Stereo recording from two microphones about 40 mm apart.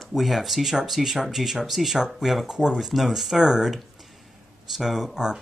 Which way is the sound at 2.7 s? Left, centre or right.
Centre.